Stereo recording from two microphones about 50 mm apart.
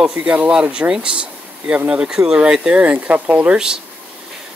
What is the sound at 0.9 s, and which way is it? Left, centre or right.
Speech, centre.